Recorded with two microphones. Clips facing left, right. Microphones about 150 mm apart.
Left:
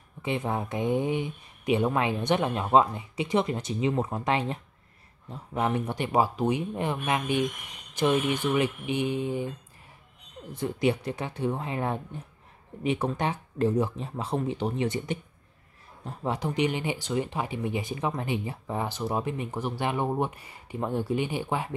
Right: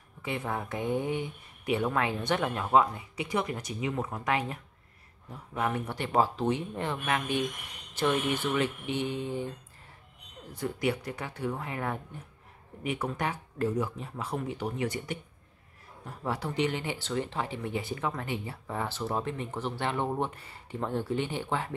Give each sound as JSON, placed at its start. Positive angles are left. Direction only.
{"t": 0.2, "sound": "speech", "side_deg": 20}
{"t": 10.5, "sound": "speech", "side_deg": 25}